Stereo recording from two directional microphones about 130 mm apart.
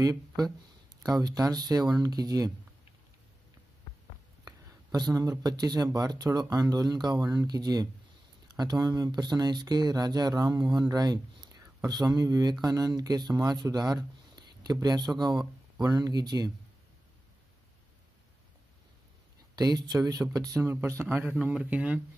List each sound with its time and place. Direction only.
0.0 s speech: 30° right (ahead or behind)
4.5 s speech: 30° right (ahead or behind)
19.5 s speech: 30° right (ahead or behind); by 22.0 s 10° right (ahead or behind)